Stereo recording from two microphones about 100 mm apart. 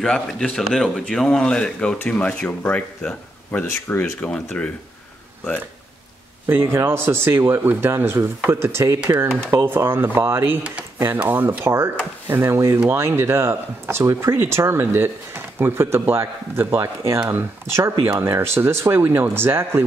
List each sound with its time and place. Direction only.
0.0 s speech: 5° left (ahead or behind)
6.4 s speech: 25° right (ahead or behind)
9.0 s speech: 15° right (ahead or behind)
9.5 s speech: 25° right (ahead or behind)